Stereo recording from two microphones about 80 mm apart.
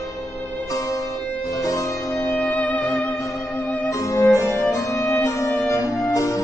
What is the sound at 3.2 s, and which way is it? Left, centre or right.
Music, left.